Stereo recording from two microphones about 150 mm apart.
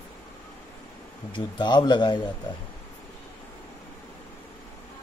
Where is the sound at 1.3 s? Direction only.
30° left (ahead or behind).